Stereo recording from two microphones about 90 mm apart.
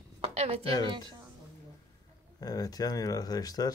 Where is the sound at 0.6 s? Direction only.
45° left (ahead or behind).